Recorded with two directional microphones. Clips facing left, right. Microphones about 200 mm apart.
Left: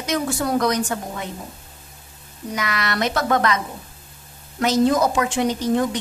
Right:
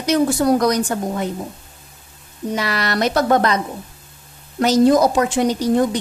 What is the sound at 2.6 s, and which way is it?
A woman's voice, 35° right (ahead or behind).